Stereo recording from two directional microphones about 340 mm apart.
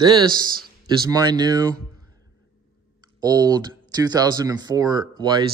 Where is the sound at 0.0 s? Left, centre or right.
Centre.